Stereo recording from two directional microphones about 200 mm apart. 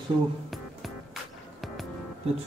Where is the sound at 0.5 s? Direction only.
Centre (ahead or behind).